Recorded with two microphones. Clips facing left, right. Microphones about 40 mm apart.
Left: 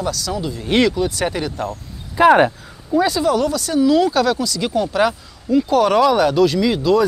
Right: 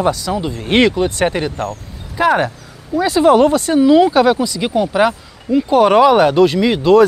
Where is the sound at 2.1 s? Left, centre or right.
Centre.